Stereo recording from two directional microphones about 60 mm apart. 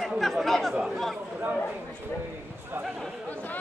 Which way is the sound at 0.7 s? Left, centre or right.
Centre.